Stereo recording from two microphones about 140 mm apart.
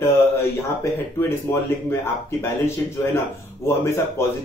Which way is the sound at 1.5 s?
25° left (ahead or behind).